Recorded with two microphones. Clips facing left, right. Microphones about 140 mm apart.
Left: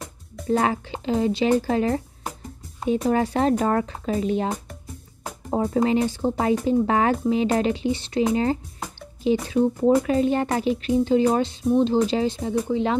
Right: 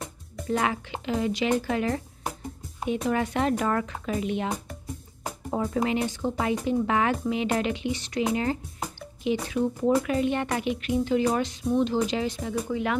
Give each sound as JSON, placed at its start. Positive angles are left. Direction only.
{"t": 0.5, "sound": "speech", "side_deg": 35}
{"t": 5.5, "sound": "speech", "side_deg": 30}